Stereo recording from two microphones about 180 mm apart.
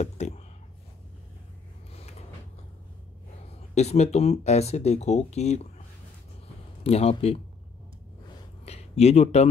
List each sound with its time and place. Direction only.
0.2 s speech: 40° left (ahead or behind)
3.5 s speech: 35° left (ahead or behind)
6.8 s speech: 35° left (ahead or behind)
8.6 s speech: 35° left (ahead or behind)